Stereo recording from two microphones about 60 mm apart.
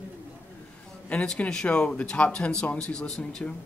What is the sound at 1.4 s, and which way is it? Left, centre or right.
Speech, centre.